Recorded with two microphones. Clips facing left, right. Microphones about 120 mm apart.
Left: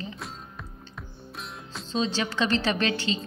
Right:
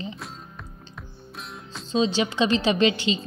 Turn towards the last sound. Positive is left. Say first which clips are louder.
# right 5 dB
turn(degrees=-15)  # may be behind; listen again after turning